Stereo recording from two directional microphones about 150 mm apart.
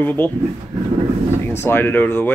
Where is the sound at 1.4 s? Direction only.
15° left (ahead or behind).